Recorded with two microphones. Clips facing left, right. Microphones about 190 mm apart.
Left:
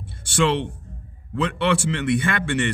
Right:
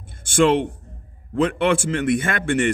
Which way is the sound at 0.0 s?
50° right (ahead or behind).